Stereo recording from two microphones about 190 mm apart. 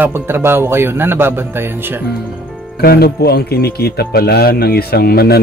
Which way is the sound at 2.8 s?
55° left (ahead or behind).